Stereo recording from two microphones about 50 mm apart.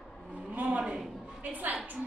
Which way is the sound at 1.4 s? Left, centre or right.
Right.